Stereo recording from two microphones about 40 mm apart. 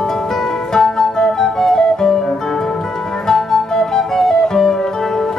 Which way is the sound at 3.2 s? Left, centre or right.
Centre.